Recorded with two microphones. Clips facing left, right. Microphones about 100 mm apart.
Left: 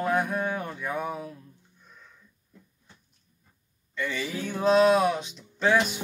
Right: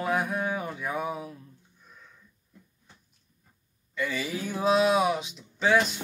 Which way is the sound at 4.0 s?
5° right (ahead or behind).